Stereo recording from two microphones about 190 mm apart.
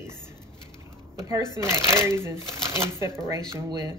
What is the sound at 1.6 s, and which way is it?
Speech, 15° right (ahead or behind).